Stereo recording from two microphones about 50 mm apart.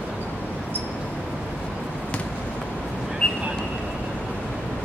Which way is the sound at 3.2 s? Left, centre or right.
Left.